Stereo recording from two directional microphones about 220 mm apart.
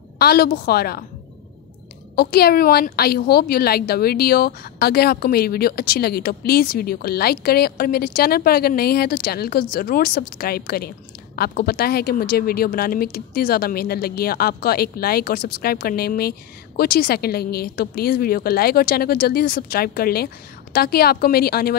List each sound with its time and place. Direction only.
0.2 s speech: 45° left (ahead or behind)
2.1 s speech: 45° left (ahead or behind)